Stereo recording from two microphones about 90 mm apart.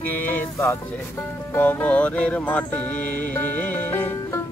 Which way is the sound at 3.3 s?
20° left (ahead or behind).